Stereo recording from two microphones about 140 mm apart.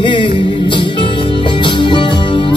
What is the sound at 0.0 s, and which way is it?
Music, 35° left (ahead or behind).